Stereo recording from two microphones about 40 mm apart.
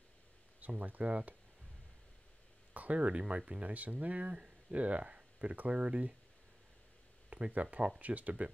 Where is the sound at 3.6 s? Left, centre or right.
Right.